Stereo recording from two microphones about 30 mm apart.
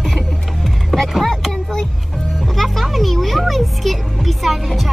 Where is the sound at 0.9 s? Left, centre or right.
Centre.